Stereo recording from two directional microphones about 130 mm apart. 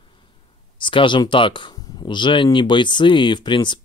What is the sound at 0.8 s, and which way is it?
Speech, 40° left (ahead or behind).